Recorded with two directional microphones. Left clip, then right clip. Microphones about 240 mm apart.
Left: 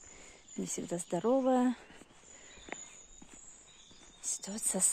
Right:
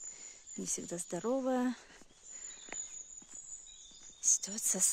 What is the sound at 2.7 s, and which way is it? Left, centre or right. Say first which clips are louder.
Walk: even; left.